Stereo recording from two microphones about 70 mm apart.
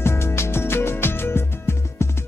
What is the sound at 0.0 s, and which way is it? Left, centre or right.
Music, left.